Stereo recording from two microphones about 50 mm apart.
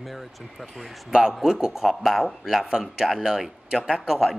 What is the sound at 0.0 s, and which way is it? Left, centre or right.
Speech, centre.